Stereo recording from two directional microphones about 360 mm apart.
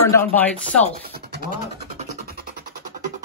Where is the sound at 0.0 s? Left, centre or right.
Centre.